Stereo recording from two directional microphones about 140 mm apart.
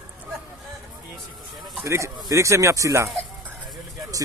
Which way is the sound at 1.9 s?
20° right (ahead or behind).